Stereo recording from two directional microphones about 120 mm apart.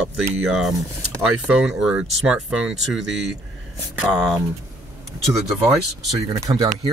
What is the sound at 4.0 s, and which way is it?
Speech, 5° right (ahead or behind).